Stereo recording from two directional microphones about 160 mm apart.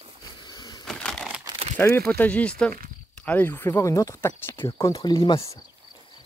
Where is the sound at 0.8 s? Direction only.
5° left (ahead or behind).